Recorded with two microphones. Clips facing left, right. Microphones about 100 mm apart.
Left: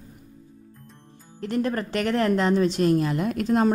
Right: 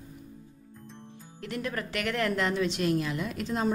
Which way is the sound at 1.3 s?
35° left (ahead or behind).